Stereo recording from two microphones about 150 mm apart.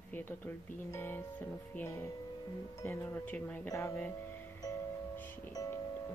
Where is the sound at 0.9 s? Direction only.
15° left (ahead or behind).